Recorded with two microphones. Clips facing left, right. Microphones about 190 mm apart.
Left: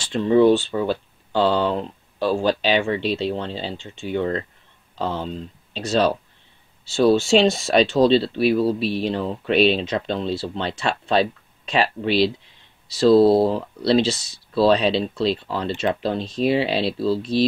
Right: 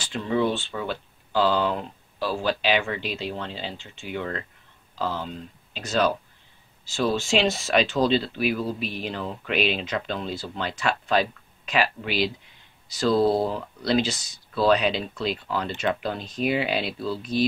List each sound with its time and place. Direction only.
0.1 s speech: 35° left (ahead or behind)